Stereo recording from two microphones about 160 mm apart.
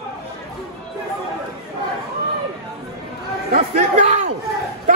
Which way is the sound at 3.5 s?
50° right (ahead or behind).